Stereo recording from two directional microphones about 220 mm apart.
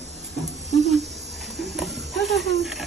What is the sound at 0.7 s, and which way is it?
Cricket, 30° right (ahead or behind).